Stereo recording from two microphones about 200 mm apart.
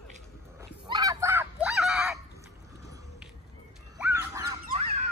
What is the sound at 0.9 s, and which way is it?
Honk, 15° right (ahead or behind).